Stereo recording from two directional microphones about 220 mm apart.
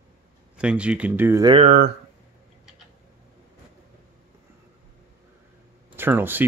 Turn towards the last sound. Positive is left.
turn(degrees=-10)  # may be behind; listen again after turning